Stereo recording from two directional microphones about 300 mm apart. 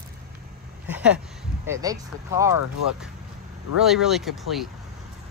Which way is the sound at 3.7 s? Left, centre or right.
Centre.